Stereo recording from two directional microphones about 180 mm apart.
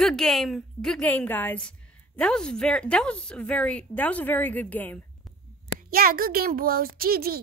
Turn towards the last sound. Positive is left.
turn(degrees=-55)  # may be behind; listen again after turning